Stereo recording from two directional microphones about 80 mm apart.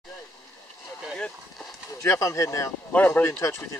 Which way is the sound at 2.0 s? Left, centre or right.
Left.